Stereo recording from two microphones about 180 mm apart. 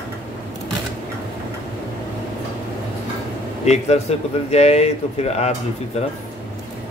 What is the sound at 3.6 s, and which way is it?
Speech, 35° left (ahead or behind).